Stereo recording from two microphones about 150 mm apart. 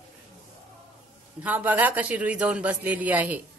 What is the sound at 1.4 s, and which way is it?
A man's voice, 10° right (ahead or behind).